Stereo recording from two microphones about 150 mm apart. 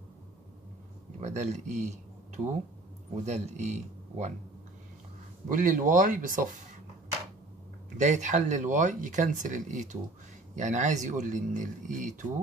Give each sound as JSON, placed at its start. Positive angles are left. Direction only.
{"t": 1.2, "sound": "speech", "side_deg": -50}
{"t": 5.5, "sound": "speech", "side_deg": -60}
{"t": 8.0, "sound": "speech", "side_deg": -55}